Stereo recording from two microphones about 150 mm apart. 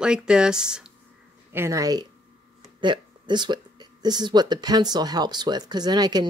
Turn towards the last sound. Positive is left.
turn(degrees=-25)  # may be behind; listen again after turning